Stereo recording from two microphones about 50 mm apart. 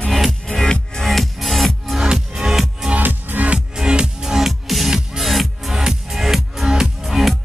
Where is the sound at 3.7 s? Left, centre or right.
Centre.